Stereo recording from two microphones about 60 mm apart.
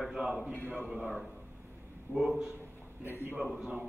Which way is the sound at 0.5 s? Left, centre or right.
Left.